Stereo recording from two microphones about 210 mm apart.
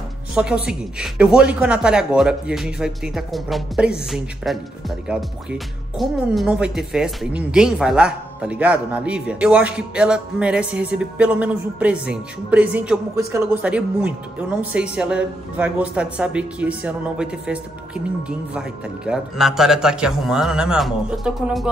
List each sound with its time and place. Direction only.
0.3 s a woman's voice: 5° right (ahead or behind)